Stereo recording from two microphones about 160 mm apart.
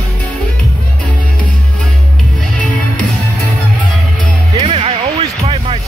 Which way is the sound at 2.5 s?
10° left (ahead or behind).